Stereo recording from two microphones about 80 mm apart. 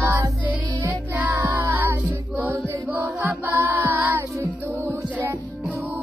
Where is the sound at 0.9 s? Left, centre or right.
Right.